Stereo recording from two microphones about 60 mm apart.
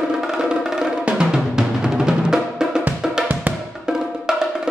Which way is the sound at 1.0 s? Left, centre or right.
Centre.